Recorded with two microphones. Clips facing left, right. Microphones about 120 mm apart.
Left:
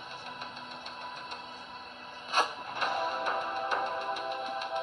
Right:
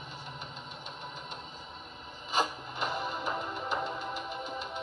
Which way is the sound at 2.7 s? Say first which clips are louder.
Left 3 dB; 60° left (ahead or behind).